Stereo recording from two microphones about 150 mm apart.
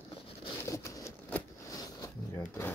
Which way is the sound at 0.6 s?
20° left (ahead or behind).